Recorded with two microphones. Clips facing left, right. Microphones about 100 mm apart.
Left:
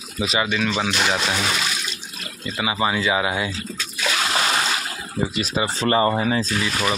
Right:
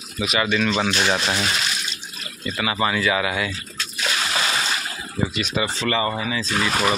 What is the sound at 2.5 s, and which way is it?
Speech, 15° left (ahead or behind).